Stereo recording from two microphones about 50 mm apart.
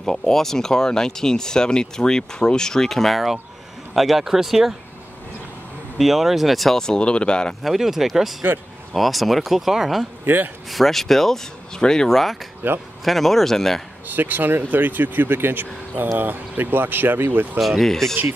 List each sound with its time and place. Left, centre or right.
0.0 s speech: centre
5.9 s speech: centre
6.8 s speech: centre
7.6 s speech: centre
10.2 s speech: right
10.7 s speech: centre
12.6 s speech: right
13.0 s speech: centre
14.0 s speech: right
17.6 s speech: centre